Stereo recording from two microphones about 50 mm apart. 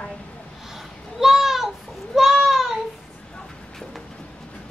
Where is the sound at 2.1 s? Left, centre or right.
Centre.